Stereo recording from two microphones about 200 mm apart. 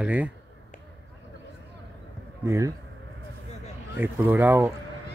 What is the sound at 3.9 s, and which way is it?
Speech, 10° right (ahead or behind).